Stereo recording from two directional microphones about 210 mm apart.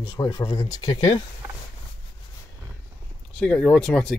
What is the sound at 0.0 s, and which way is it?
Speech, 25° left (ahead or behind).